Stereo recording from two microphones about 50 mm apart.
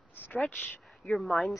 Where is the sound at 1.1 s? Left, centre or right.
Centre.